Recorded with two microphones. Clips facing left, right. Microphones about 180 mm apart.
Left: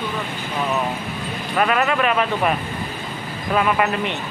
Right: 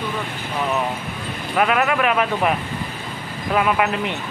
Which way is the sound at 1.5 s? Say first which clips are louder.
Even; 10° right (ahead or behind).